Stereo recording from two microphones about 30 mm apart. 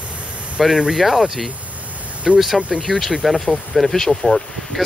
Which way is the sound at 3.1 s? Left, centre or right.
Centre.